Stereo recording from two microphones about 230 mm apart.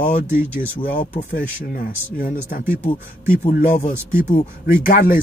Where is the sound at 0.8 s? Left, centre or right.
Left.